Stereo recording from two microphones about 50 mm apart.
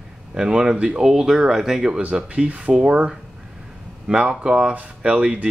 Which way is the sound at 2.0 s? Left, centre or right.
Right.